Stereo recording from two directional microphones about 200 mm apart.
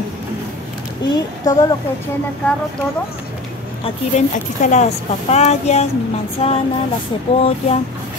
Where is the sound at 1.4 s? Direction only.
20° left (ahead or behind).